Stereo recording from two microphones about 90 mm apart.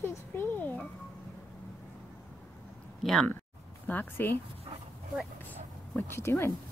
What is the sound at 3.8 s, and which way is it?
Speech, 20° left (ahead or behind).